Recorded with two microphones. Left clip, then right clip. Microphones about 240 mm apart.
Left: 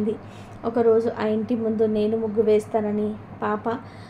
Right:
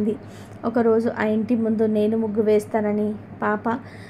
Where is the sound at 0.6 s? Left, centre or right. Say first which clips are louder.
Even; right.